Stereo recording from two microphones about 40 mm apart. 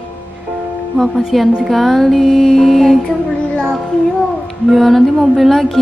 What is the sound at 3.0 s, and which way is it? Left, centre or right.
Child singing, centre.